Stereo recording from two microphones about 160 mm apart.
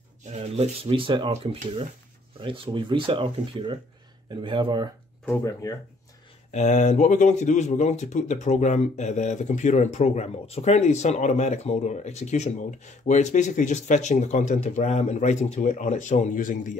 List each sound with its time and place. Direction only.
0.4 s speech: 40° right (ahead or behind)
5.2 s speech: 15° left (ahead or behind)
6.5 s speech: 50° left (ahead or behind)